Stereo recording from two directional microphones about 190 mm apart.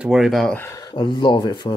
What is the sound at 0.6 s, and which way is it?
Speech, 20° left (ahead or behind).